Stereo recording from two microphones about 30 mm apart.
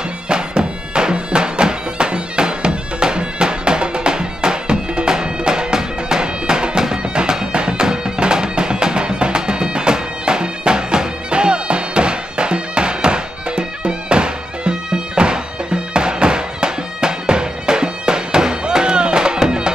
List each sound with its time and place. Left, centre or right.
0.3 s bagpipes: right
5.1 s music: right
7.2 s bagpipes: right
7.8 s music: right